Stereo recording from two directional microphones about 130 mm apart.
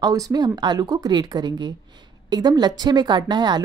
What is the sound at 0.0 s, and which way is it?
A woman's voice, 30° right (ahead or behind).